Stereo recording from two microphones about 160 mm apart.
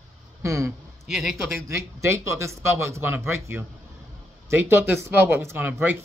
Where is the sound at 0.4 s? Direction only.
20° right (ahead or behind).